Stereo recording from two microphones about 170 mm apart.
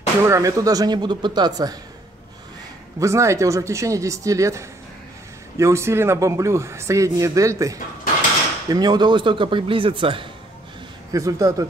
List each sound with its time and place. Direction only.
0.2 s speech: 20° right (ahead or behind)
3.0 s a man's voice: 15° right (ahead or behind)
11.1 s speech: 20° right (ahead or behind)